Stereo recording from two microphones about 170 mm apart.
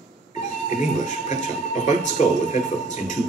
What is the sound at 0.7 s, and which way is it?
Speech, 45° left (ahead or behind).